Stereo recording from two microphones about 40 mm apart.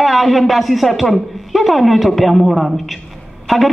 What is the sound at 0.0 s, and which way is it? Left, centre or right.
A woman's voice, centre.